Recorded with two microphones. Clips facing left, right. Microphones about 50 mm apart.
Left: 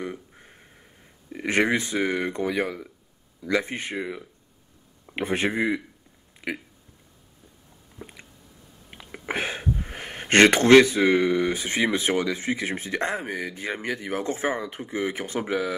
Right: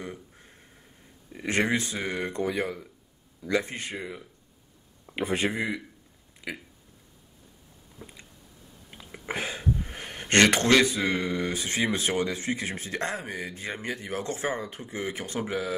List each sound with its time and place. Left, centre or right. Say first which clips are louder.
0.0 s a sound: left 5 dB; left
1.3 s speech: left 3 dB; left
5.1 s speech: left 2 dB; left
5.5 s speech: left 5 dB; centre
8.0 s a sound: left 4 dB; left
9.1 s speech: left 4 dB; left
13.4 s speech: left 4 dB; left